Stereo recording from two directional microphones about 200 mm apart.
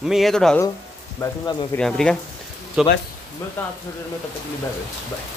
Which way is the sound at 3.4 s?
10° left (ahead or behind).